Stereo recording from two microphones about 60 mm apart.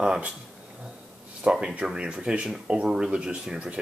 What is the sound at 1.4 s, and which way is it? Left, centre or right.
Speech, centre.